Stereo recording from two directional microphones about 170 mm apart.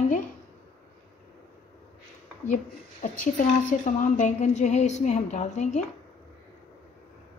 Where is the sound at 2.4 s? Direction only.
50° left (ahead or behind).